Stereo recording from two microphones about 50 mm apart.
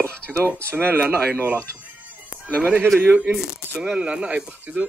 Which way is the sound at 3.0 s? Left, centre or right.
Right.